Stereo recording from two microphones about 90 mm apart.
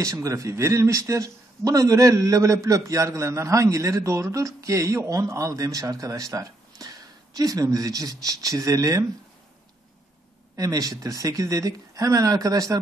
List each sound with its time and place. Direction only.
0.0 s speech: 35° right (ahead or behind)
10.5 s speech: 40° right (ahead or behind)